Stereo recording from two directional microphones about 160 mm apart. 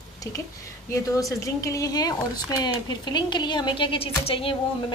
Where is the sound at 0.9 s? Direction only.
20° left (ahead or behind).